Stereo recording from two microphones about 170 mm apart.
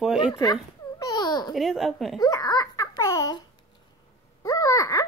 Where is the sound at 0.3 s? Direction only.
25° left (ahead or behind).